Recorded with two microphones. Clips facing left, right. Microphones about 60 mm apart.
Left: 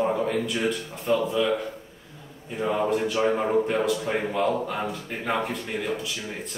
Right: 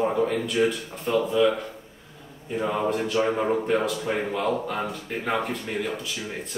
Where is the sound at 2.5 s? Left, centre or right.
Centre.